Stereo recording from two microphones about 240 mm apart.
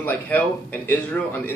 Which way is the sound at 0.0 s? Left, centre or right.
Centre.